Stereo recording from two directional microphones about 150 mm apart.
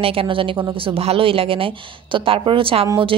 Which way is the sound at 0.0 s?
40° right (ahead or behind).